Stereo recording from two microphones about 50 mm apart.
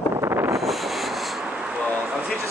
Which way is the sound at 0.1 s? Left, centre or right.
Right.